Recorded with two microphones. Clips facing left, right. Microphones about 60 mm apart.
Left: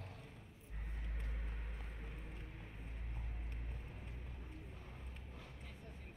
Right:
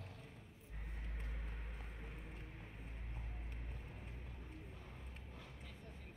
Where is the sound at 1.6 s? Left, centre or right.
Centre.